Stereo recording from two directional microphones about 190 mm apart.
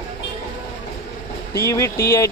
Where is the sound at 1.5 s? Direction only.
15° left (ahead or behind).